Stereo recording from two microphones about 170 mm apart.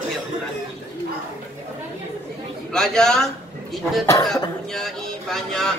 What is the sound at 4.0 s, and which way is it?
Speech, 20° left (ahead or behind).